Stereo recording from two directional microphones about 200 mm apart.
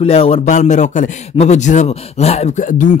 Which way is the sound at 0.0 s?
30° left (ahead or behind).